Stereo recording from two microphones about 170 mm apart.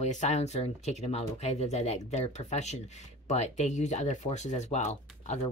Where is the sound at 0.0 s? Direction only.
45° left (ahead or behind).